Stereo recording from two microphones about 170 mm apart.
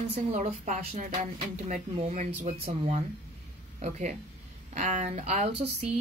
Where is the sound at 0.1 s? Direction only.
40° right (ahead or behind).